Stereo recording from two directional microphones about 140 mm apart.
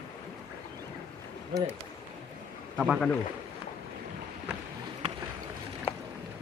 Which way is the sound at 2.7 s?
Centre (ahead or behind).